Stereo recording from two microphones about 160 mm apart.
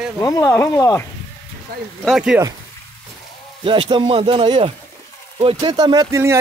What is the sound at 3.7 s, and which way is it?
Speech, 30° right (ahead or behind).